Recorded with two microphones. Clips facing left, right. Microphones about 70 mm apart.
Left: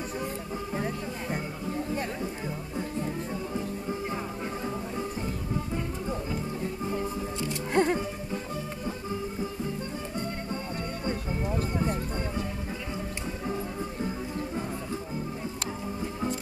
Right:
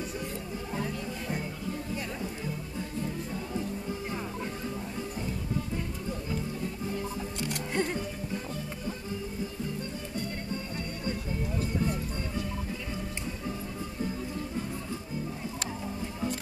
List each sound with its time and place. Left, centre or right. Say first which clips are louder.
0.7 s music: left 1 dB; left
7.7 s music: left 7 dB; left
11.1 s music: left 3 dB; left